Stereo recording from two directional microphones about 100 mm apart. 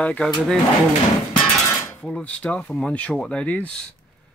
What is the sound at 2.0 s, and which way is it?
Speech, 10° left (ahead or behind).